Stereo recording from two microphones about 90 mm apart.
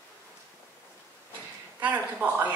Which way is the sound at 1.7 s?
15° right (ahead or behind).